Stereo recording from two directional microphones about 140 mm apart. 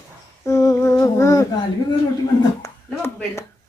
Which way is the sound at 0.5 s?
20° left (ahead or behind).